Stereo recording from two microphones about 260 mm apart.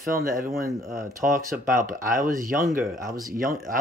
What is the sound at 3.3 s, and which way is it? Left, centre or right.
Speech, right.